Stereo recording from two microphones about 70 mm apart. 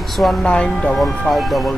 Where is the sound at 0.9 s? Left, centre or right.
Centre.